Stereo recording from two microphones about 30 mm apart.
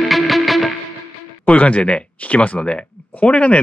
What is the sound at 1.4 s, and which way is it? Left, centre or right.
Speech, left.